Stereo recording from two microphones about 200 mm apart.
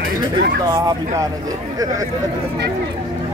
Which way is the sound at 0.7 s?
15° right (ahead or behind).